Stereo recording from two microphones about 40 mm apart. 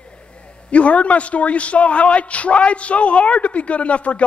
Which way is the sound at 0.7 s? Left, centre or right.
Left.